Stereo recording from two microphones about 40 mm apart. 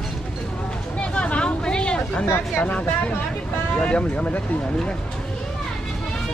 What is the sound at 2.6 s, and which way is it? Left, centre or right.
Speech, left.